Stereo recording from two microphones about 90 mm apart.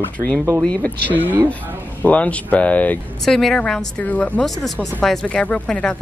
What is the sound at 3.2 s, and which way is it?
Speech, 5° left (ahead or behind).